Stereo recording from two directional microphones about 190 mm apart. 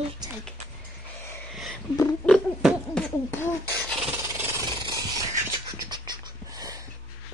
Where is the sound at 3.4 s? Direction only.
5° left (ahead or behind).